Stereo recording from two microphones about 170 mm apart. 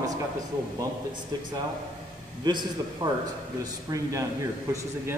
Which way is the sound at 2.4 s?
25° right (ahead or behind).